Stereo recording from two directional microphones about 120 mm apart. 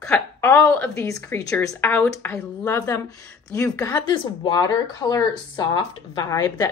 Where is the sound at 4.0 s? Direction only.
35° left (ahead or behind).